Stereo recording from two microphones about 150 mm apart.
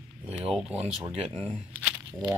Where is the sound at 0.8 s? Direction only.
45° right (ahead or behind).